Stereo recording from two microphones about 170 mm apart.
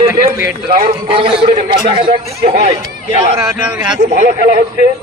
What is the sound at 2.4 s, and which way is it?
Speech, 70° right (ahead or behind).